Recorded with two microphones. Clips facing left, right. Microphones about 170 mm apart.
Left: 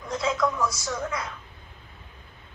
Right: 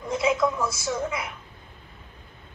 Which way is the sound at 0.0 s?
20° right (ahead or behind).